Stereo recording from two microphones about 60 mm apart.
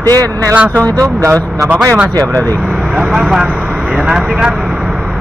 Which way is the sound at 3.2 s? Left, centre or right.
Centre.